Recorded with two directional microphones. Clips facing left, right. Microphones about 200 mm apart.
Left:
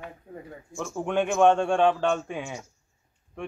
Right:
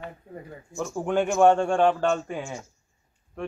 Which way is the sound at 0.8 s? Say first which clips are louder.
Right 2 dB; 10° right (ahead or behind).